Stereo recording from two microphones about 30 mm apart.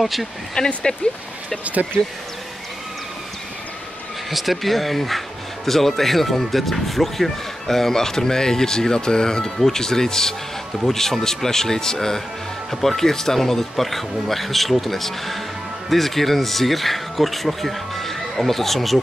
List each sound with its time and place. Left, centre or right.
0.0 s speech: centre
0.6 s speech: left
1.6 s speech: right
4.3 s speech: centre